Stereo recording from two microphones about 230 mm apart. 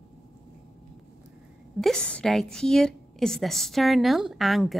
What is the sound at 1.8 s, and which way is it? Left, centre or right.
A woman's voice, centre.